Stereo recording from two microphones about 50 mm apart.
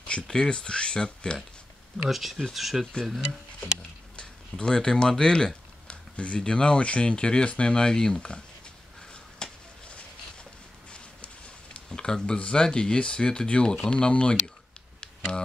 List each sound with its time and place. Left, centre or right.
0.0 s speech: centre
2.0 s speech: centre
3.2 s speech: centre
4.2 s speech: centre
9.1 s a sound: left
12.4 s speech: left